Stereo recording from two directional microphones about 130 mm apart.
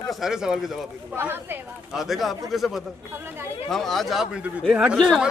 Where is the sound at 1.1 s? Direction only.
15° right (ahead or behind).